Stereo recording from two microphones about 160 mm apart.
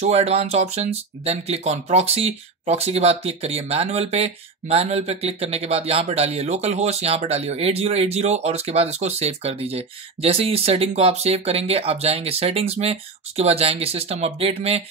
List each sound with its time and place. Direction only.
0.0 s speech: 40° right (ahead or behind)